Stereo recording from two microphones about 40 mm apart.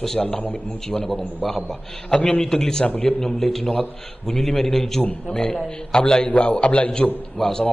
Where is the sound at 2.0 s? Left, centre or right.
Left.